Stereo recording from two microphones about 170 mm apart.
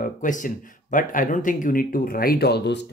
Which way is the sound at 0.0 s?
50° left (ahead or behind).